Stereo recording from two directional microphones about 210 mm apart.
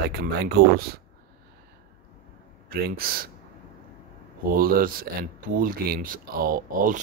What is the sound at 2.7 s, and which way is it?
Speech, 45° right (ahead or behind).